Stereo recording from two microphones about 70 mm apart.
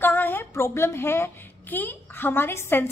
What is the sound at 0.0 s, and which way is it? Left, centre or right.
A woman's voice, left.